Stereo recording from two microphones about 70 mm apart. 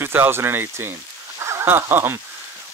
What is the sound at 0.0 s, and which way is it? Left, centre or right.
Speech, right.